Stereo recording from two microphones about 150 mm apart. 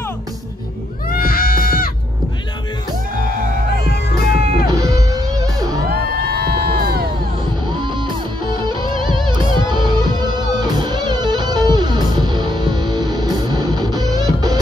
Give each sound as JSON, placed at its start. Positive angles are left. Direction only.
{"t": 1.1, "sound": "cat", "side_deg": 75}
{"t": 3.2, "sound": "music", "side_deg": -70}
{"t": 3.9, "sound": "music", "side_deg": 90}
{"t": 6.0, "sound": "crowd", "side_deg": -90}
{"t": 8.6, "sound": "music", "side_deg": -30}